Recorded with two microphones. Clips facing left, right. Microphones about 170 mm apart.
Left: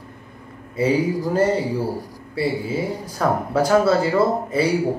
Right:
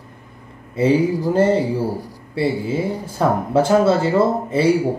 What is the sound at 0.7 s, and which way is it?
Speech, 30° right (ahead or behind).